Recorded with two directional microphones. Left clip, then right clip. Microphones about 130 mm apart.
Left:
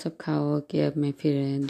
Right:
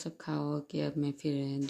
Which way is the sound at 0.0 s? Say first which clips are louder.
Left 8 dB; 35° left (ahead or behind).